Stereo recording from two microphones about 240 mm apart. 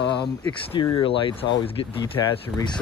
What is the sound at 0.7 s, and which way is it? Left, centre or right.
Speech, centre.